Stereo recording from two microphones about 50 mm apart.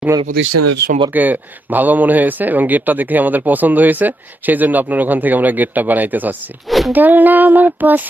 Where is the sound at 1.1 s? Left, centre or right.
Right.